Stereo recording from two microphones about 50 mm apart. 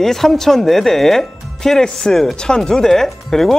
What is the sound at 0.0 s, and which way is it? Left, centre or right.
Speech, centre.